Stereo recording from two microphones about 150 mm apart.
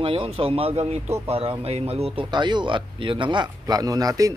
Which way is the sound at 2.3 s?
30° right (ahead or behind).